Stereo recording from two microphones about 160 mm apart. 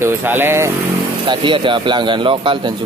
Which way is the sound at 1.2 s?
30° right (ahead or behind).